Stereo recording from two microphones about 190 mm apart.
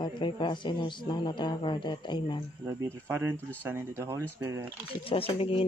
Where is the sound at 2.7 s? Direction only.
15° right (ahead or behind).